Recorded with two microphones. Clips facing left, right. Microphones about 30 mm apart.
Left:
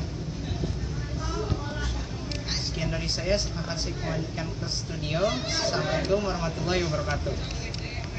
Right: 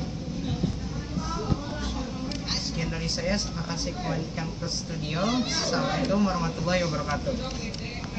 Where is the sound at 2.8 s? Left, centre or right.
Centre.